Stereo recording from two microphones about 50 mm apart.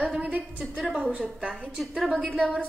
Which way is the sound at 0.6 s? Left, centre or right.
Centre.